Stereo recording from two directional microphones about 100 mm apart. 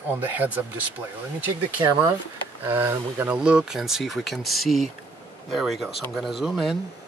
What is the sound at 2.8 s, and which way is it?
Speech, 25° right (ahead or behind).